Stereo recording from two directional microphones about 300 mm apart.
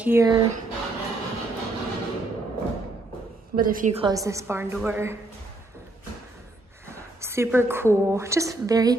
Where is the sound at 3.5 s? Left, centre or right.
Right; by 5.2 s centre.